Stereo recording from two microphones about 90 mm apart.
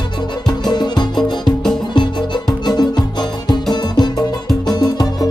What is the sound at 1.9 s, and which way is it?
Music, 55° left (ahead or behind).